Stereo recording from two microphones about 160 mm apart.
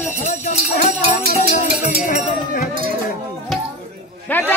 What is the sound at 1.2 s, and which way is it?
Music, 40° left (ahead or behind).